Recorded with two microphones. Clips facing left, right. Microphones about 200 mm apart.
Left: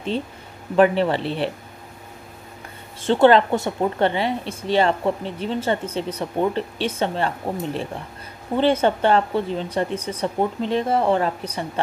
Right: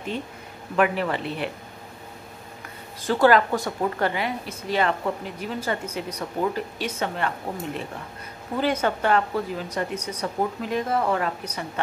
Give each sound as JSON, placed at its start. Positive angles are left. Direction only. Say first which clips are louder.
{"t": 0.7, "sound": "speech", "louder": "left 6 dB", "side_deg": 30}
{"t": 3.0, "sound": "speech", "louder": "left 4 dB", "side_deg": 25}